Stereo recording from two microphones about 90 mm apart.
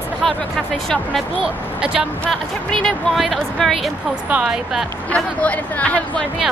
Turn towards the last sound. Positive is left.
turn(degrees=15)  # may be behind; listen again after turning